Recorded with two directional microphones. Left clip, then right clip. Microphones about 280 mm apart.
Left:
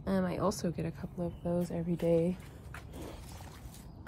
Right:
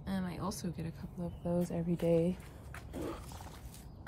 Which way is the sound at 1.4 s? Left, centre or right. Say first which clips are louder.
Even; right.